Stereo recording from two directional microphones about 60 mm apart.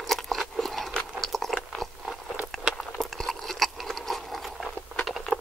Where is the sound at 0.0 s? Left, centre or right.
Centre.